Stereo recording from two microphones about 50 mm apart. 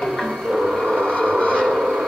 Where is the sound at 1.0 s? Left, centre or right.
Centre.